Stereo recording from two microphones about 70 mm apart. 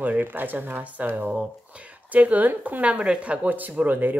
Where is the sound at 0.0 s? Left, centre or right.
Right.